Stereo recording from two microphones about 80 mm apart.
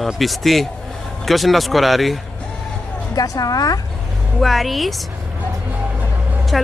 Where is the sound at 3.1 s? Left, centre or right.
Left.